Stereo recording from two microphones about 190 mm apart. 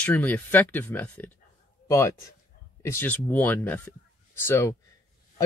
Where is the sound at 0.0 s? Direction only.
10° left (ahead or behind).